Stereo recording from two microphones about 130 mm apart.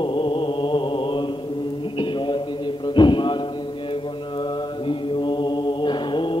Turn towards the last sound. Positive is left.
turn(degrees=40)  # may be behind; listen again after turning